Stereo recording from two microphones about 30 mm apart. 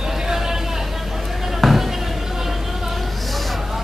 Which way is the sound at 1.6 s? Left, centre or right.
Centre.